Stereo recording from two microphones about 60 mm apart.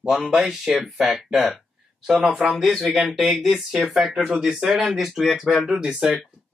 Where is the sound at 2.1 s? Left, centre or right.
Centre.